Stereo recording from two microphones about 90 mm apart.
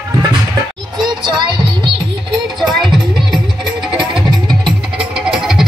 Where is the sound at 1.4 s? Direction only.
60° right (ahead or behind).